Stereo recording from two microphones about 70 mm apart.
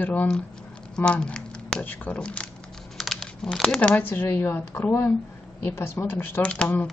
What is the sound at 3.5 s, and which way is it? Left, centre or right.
Speech, centre.